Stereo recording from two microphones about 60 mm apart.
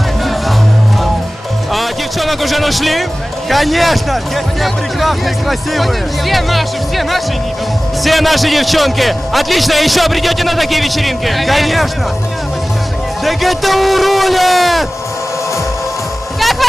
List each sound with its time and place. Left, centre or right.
1.7 s speech: centre
13.2 s speech: centre
16.3 s music: centre